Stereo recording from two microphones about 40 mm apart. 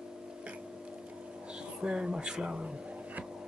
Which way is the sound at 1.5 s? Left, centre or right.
Right.